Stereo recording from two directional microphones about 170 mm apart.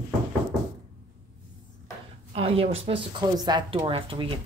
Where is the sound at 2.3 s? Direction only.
35° right (ahead or behind).